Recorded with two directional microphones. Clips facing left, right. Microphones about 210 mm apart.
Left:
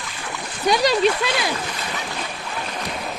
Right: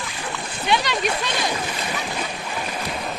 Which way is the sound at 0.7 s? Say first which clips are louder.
Left 4 dB; 35° left (ahead or behind).